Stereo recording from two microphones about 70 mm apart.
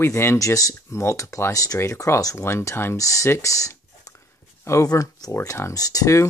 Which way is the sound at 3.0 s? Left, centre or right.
Left.